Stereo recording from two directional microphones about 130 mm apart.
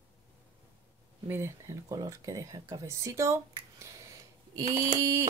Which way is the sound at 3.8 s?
25° right (ahead or behind).